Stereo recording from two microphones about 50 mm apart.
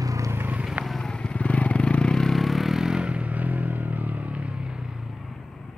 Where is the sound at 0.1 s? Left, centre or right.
Right.